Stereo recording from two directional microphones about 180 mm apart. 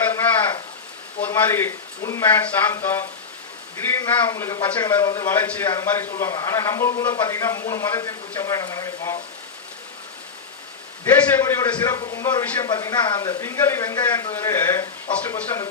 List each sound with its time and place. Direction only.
1.2 s speech: 15° left (ahead or behind)
5.3 s speech: 10° left (ahead or behind)
8.4 s a sound: 20° left (ahead or behind)
11.3 s speech: 15° left (ahead or behind)